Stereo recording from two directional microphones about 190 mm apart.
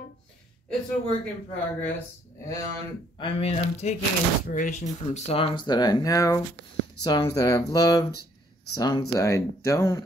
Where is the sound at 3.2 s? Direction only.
30° left (ahead or behind).